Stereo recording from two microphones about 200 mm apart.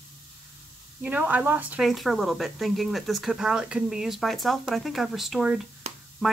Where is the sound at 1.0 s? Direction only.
10° right (ahead or behind).